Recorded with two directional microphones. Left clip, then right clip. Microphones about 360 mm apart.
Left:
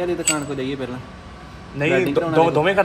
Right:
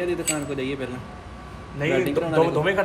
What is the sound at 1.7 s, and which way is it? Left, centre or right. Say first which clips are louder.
A man's voice: left 4 dB; left.